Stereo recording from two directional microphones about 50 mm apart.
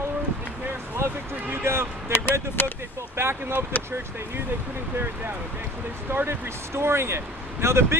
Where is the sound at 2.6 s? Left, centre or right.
Left.